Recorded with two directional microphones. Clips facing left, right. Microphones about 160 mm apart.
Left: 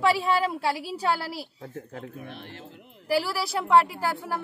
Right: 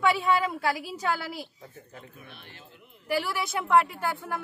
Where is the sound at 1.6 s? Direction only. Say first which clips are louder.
Left 8 dB; 80° left.